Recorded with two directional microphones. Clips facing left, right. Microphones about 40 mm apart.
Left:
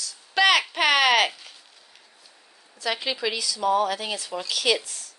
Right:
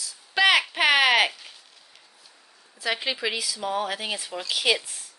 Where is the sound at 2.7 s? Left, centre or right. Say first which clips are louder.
Even; centre.